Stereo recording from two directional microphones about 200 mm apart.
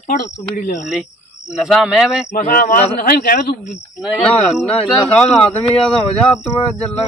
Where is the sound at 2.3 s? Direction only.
45° left (ahead or behind).